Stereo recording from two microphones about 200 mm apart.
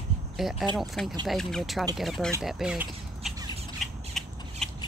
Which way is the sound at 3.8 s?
Centre (ahead or behind).